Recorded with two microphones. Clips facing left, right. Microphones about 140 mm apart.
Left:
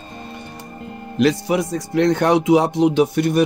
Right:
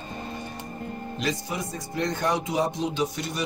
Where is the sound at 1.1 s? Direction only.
70° left (ahead or behind).